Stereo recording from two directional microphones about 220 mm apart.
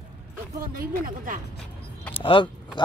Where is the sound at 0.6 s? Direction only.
40° right (ahead or behind).